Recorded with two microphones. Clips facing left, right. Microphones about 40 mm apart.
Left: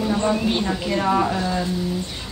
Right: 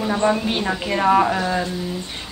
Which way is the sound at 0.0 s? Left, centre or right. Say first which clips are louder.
Right 2 dB; centre.